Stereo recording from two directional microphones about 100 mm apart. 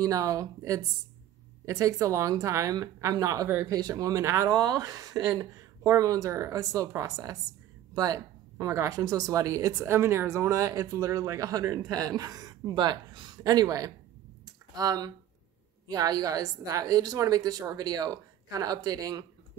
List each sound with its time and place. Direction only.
0.0 s speech: 35° right (ahead or behind)
14.4 s a sound: 40° right (ahead or behind)
15.9 s speech: 40° right (ahead or behind)